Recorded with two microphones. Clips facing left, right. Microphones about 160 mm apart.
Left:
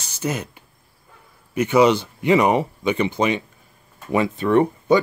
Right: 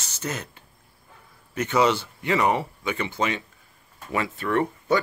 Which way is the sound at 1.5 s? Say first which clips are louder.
Left 6 dB; 10° left (ahead or behind).